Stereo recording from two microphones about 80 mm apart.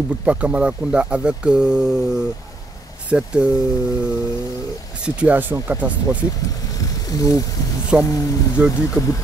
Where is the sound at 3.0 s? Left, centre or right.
Centre.